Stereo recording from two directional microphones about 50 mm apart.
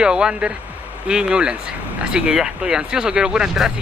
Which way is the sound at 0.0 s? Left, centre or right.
Centre.